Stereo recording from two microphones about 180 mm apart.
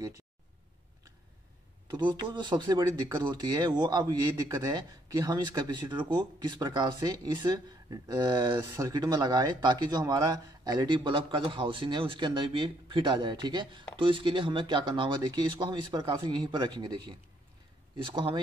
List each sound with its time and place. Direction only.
1.9 s speech: 25° right (ahead or behind)